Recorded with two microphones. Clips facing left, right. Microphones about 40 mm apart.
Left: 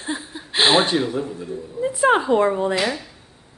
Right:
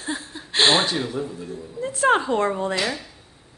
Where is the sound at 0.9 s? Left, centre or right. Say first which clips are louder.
Left 4 dB; centre.